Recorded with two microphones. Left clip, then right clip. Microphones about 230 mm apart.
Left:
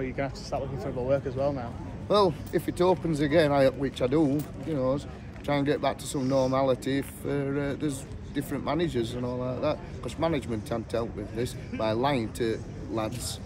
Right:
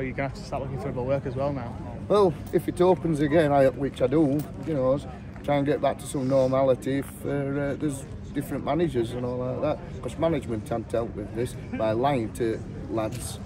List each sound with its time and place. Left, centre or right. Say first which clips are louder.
0.0 s speech: right 1 dB; right
2.0 s speech: right 2 dB; centre